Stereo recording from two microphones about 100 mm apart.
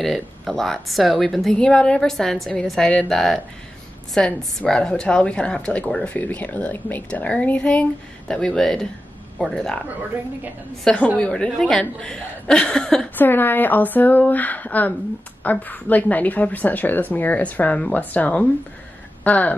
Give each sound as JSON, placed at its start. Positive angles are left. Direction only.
{"t": 0.0, "sound": "a woman's voice", "side_deg": 0}
{"t": 13.1, "sound": "a woman's voice", "side_deg": 20}